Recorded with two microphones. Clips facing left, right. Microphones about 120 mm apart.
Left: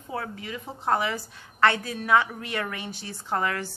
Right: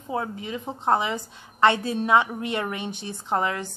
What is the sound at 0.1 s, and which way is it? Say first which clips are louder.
A woman's voice: right 4 dB; 20° right (ahead or behind).